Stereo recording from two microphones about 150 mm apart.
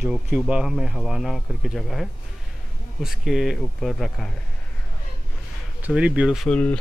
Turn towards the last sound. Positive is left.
turn(degrees=10)  # may be behind; listen again after turning